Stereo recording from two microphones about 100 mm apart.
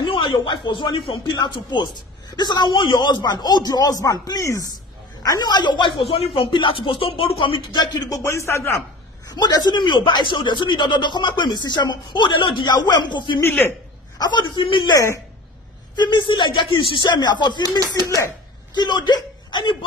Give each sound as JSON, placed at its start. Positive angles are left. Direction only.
{"t": 0.5, "sound": "a man's voice", "side_deg": 55}
{"t": 5.9, "sound": "speech", "side_deg": 70}
{"t": 7.7, "sound": "a man's voice", "side_deg": 40}
{"t": 8.3, "sound": "speech", "side_deg": 30}
{"t": 9.3, "sound": "a man's voice", "side_deg": 40}
{"t": 13.4, "sound": "speech", "side_deg": 20}
{"t": 14.1, "sound": "a man's voice", "side_deg": 45}
{"t": 14.6, "sound": "speech", "side_deg": 60}
{"t": 16.0, "sound": "a man's voice", "side_deg": 50}
{"t": 17.6, "sound": "speech", "side_deg": -40}
{"t": 18.0, "sound": "speech", "side_deg": 30}
{"t": 18.8, "sound": "speech", "side_deg": 45}